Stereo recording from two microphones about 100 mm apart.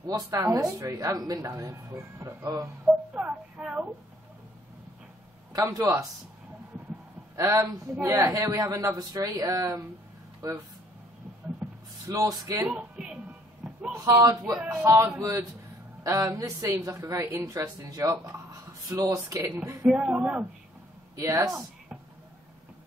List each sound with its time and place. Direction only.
0.0 s speech: 40° right (ahead or behind)
3.2 s a sound: 15° right (ahead or behind)
5.5 s a man's voice: 35° right (ahead or behind)
7.3 s speech: 30° right (ahead or behind)
12.1 s speech: 40° right (ahead or behind)
12.6 s a sound: 10° right (ahead or behind)
13.9 s speech: 35° right (ahead or behind)
19.8 s speech: 10° right (ahead or behind)
21.5 s a sound: 5° right (ahead or behind)